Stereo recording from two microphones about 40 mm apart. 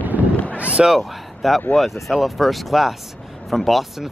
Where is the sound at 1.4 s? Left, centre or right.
Centre.